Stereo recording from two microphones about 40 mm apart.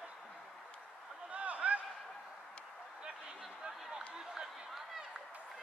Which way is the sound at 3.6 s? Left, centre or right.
Centre.